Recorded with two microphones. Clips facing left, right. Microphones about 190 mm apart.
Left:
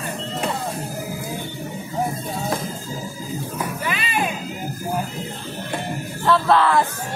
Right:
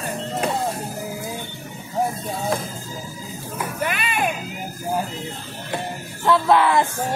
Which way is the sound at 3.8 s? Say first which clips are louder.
Even; 55° right (ahead or behind).